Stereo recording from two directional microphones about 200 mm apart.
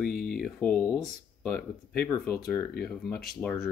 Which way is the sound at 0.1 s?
50° left (ahead or behind).